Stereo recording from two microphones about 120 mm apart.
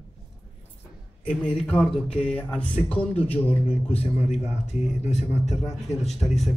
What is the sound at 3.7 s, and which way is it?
Speech, 60° left (ahead or behind).